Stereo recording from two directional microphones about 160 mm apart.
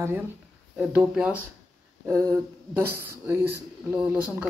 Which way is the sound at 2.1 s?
20° right (ahead or behind).